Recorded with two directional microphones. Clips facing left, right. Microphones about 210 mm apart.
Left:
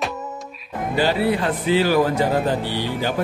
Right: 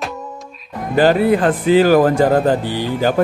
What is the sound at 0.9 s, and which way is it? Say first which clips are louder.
A man's voice: right 7 dB; 50° right (ahead or behind).